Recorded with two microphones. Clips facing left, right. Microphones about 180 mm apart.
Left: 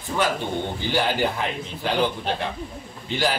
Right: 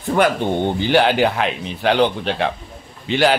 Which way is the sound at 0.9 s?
75° right (ahead or behind).